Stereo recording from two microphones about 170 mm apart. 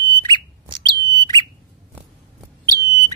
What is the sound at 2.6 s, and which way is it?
Bird, 20° right (ahead or behind).